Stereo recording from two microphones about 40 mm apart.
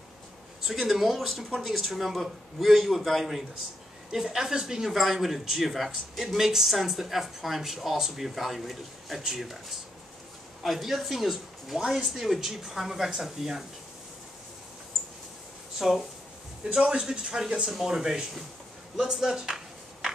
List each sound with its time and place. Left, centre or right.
0.7 s a woman's voice: centre
4.9 s a woman's voice: centre
16.7 s a woman's voice: right
19.1 s a sound: centre